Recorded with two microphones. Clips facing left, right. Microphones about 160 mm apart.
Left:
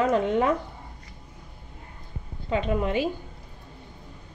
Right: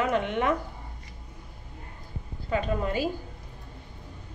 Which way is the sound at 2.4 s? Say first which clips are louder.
Left 2 dB; 20° left (ahead or behind).